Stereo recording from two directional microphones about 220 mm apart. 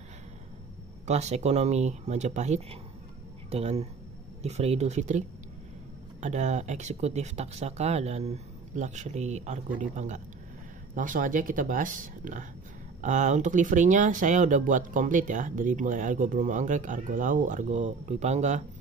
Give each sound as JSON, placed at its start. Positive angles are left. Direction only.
{"t": 1.0, "sound": "speech", "side_deg": -30}
{"t": 6.2, "sound": "speech", "side_deg": -30}